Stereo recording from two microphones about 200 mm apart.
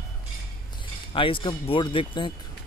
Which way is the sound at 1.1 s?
25° left (ahead or behind).